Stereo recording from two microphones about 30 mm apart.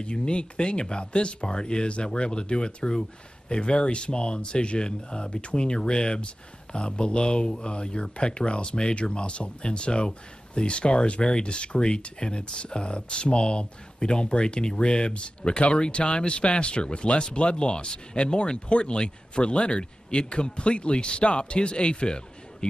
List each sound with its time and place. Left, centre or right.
0.0 s speech: left